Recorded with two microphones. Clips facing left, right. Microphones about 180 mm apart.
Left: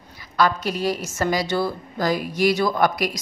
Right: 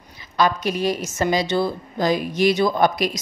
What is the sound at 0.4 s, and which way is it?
A woman's voice, 20° right (ahead or behind).